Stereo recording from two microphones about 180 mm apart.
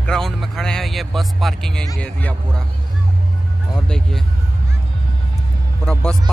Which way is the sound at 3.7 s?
Centre (ahead or behind).